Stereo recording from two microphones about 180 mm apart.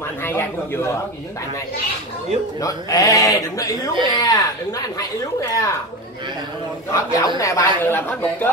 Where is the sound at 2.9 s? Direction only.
20° left (ahead or behind).